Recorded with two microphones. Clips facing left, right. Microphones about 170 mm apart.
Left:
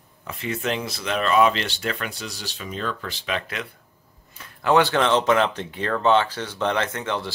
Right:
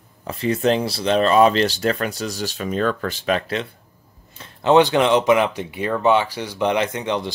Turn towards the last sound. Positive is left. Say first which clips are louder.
# right 4 dB
turn(degrees=-20)  # may be behind; listen again after turning